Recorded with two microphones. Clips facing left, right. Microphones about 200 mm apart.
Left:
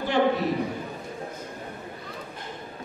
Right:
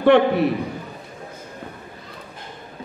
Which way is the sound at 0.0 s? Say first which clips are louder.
Right 8 dB; 65° right (ahead or behind).